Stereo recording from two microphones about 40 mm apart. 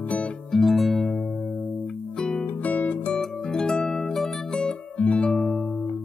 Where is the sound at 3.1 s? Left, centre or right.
Centre.